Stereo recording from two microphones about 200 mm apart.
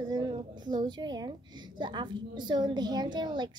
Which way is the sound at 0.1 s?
20° right (ahead or behind).